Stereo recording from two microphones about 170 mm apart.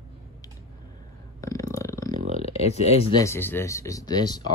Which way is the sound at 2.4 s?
35° left (ahead or behind).